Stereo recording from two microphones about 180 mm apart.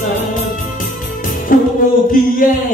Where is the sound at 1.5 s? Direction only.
50° left (ahead or behind).